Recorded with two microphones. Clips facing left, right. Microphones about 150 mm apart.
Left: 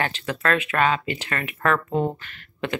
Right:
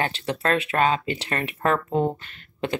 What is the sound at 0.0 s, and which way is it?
Speech, 30° right (ahead or behind).